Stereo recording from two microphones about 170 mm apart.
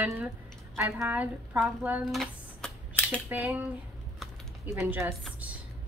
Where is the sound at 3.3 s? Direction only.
10° right (ahead or behind).